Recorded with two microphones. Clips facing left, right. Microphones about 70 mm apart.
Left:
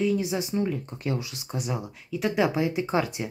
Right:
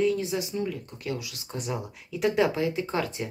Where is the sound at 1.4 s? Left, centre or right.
Centre.